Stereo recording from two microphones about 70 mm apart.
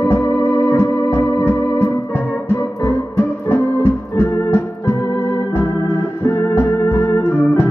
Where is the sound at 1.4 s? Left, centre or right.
Left.